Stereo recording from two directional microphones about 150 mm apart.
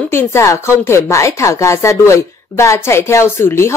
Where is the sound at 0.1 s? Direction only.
15° left (ahead or behind).